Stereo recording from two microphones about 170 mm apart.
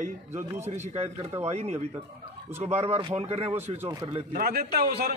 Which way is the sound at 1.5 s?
40° right (ahead or behind).